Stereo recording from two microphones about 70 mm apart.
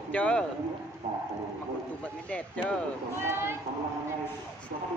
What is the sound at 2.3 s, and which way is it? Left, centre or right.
Speech, centre.